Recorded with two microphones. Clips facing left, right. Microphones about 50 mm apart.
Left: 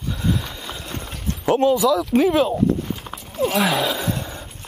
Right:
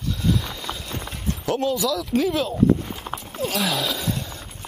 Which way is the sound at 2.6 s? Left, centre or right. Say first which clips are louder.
Right 1 dB; centre.